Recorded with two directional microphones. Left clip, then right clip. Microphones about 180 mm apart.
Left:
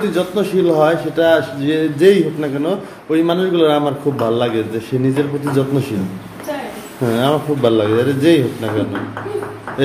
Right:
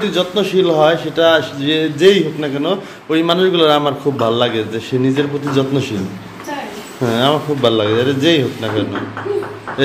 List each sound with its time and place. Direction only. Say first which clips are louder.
0.0 s a man's voice: right 1 dB; 10° left (ahead or behind)
7.0 s a man's voice: right 1 dB; 5° left (ahead or behind)